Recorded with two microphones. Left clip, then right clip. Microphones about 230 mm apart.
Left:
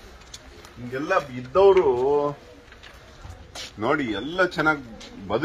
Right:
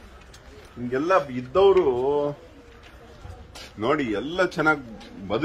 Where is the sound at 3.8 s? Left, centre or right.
Centre.